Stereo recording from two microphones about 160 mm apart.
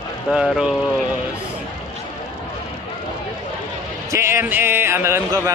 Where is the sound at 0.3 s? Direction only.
5° right (ahead or behind).